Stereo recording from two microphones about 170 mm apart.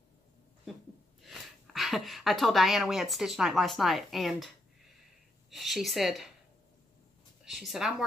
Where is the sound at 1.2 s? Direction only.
Centre (ahead or behind).